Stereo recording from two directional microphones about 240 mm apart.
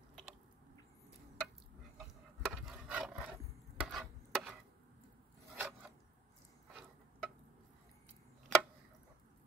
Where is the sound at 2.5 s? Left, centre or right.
Centre.